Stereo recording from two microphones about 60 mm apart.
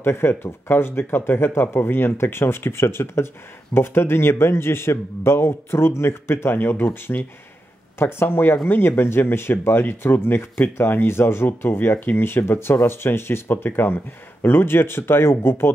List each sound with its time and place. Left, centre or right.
0.0 s a man's voice: left